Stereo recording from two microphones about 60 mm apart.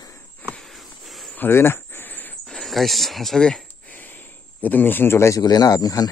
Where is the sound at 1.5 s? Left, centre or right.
Left.